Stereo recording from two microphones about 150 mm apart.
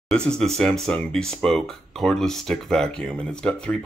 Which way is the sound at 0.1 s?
5° left (ahead or behind).